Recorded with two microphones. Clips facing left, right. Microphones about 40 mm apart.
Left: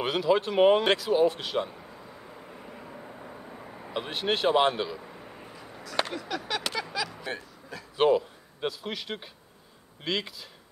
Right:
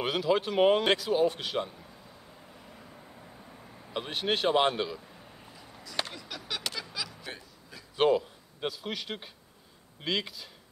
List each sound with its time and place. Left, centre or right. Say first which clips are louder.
0.0 s speech: left 3 dB; centre
2.5 s vehicle: left 7 dB; left
3.9 s speech: left 2 dB; centre
5.0 s a sound: left 6 dB; left
6.3 s a sound: left 5 dB; centre
8.0 s a man's voice: left 2 dB; centre